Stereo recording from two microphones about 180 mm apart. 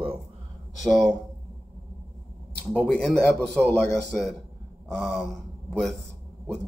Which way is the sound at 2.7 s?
10° left (ahead or behind).